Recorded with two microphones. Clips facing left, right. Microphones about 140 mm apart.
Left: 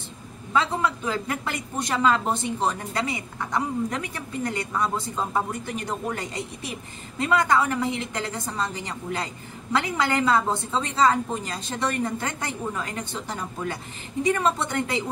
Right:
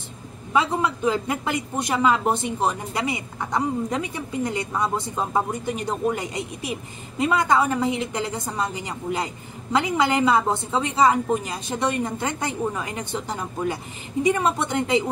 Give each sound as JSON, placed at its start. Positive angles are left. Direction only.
{"t": 0.5, "sound": "a woman's voice", "side_deg": -20}